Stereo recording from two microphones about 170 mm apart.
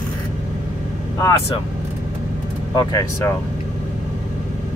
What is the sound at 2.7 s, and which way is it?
Speech, 20° left (ahead or behind).